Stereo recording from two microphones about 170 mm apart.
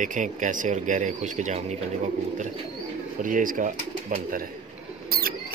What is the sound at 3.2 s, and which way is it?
Speech, 50° right (ahead or behind).